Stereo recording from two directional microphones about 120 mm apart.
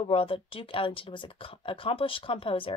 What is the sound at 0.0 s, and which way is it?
Speech, 50° left (ahead or behind).